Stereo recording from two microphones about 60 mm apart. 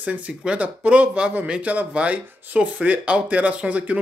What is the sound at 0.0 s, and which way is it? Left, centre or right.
Speech, right.